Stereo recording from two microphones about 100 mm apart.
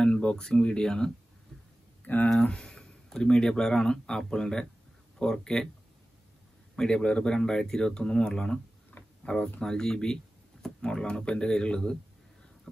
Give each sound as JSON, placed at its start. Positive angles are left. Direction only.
{"t": 0.0, "sound": "speech", "side_deg": 10}
{"t": 2.2, "sound": "speech", "side_deg": 5}
{"t": 6.7, "sound": "speech", "side_deg": 10}